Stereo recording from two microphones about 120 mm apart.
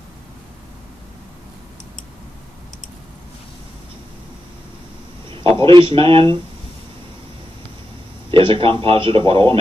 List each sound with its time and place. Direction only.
5.7 s a man's voice: 45° right (ahead or behind)
8.3 s a man's voice: 50° right (ahead or behind)